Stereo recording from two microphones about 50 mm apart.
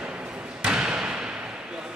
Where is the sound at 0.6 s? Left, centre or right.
Centre.